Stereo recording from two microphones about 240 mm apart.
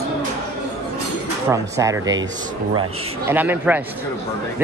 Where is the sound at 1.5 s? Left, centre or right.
Centre.